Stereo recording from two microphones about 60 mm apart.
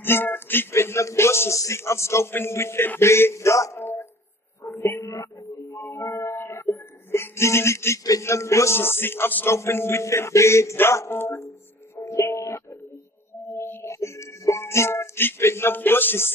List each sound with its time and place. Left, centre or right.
0.0 s speech: left
4.6 s a sound: left
5.0 s music: left
5.8 s music: left
8.2 s speech: left
8.7 s music: left
9.6 s speech: left
10.8 s music: left
12.0 s music: left
13.5 s music: left